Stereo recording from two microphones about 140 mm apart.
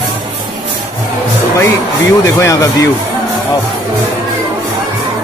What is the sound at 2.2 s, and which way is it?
Speech, 20° left (ahead or behind).